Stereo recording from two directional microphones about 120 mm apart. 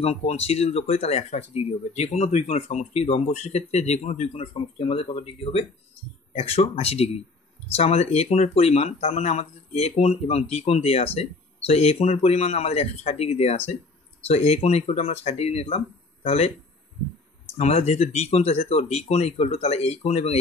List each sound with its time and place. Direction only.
0.0 s speech: 60° left (ahead or behind)
17.6 s speech: 60° left (ahead or behind)